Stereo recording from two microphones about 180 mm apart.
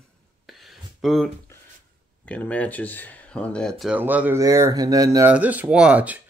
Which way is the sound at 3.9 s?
10° right (ahead or behind).